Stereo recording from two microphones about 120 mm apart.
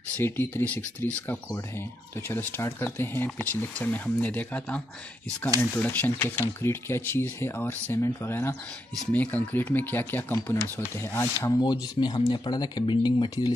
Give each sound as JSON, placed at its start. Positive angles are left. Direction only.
{"t": 0.2, "sound": "speech", "side_deg": 20}
{"t": 11.3, "sound": "speech", "side_deg": 35}